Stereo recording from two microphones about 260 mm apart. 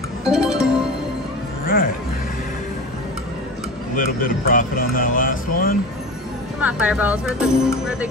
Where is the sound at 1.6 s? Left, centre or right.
Left.